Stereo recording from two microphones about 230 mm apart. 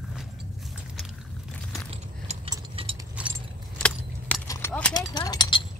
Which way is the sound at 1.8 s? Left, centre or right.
Right.